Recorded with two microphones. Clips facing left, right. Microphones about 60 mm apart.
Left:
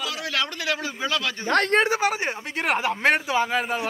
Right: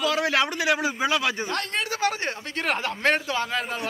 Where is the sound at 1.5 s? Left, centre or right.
Left.